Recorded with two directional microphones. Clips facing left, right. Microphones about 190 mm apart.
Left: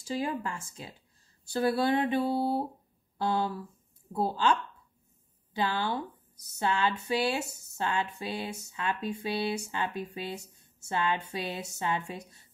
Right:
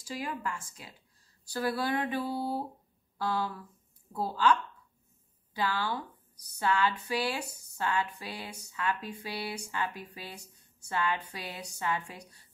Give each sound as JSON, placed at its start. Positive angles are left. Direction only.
{"t": 0.0, "sound": "speech", "side_deg": 25}